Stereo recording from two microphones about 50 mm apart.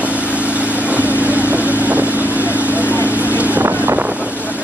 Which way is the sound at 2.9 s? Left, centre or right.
Left.